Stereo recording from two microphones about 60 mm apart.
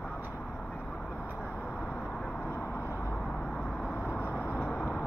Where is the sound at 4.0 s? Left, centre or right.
Left.